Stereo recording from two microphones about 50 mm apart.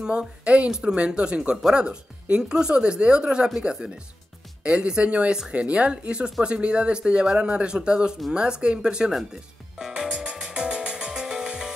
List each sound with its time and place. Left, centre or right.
0.0 s speech: centre
9.3 s music: centre